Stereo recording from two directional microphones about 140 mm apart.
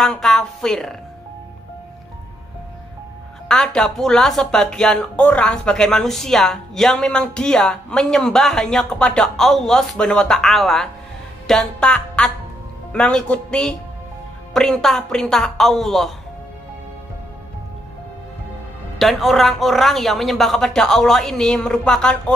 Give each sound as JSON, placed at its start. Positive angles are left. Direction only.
{"t": 0.0, "sound": "speech", "side_deg": 5}
{"t": 3.4, "sound": "speech", "side_deg": 5}
{"t": 18.9, "sound": "speech", "side_deg": 0}